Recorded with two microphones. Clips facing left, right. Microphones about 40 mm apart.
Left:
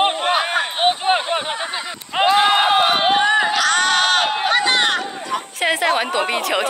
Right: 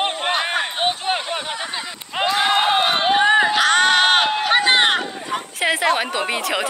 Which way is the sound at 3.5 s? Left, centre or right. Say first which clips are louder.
Right 1 dB; right.